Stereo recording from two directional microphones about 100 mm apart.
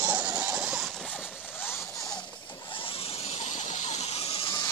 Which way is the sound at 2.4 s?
55° left (ahead or behind).